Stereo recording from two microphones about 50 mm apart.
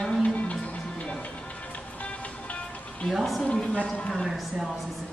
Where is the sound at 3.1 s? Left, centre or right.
Centre.